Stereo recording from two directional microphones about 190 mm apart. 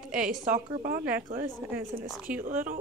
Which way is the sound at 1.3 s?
45° right (ahead or behind).